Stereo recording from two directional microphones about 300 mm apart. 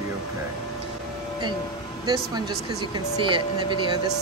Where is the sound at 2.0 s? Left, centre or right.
Centre.